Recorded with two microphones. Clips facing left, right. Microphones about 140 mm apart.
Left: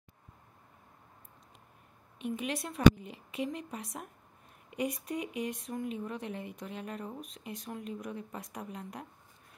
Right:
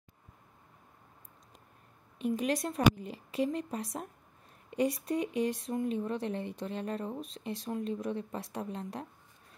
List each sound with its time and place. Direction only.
2.1 s speech: 40° right (ahead or behind)